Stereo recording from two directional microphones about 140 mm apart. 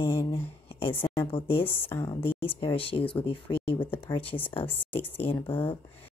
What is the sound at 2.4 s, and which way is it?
Speech, 40° left (ahead or behind).